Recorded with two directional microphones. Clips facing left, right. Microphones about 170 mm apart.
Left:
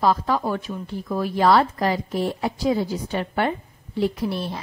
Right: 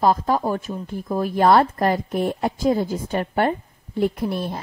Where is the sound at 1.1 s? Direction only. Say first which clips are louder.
Right 2 dB; 50° right (ahead or behind).